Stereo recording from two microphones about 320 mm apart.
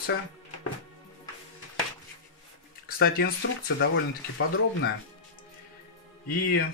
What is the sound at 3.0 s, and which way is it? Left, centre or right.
Speech, left.